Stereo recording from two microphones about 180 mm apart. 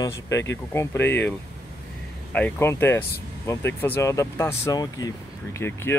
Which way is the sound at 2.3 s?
10° left (ahead or behind).